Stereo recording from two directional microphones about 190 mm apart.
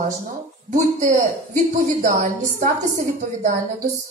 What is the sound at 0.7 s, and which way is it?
A woman's voice, 45° right (ahead or behind).